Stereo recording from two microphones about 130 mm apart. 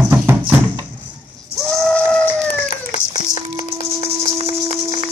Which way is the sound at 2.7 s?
90° left.